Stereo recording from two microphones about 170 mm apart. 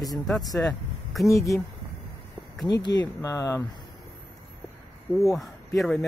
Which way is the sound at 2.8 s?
20° left (ahead or behind).